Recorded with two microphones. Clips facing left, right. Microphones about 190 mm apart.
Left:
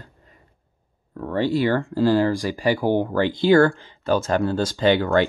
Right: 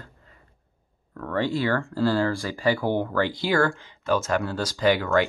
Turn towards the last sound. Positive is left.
turn(degrees=30)  # may be behind; listen again after turning